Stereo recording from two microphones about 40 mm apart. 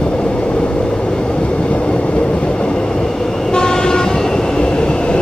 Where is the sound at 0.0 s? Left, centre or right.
Left.